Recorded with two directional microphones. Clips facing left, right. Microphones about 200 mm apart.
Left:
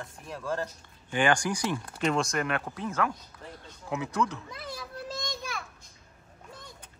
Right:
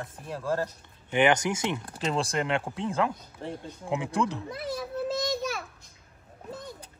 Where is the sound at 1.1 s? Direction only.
20° right (ahead or behind).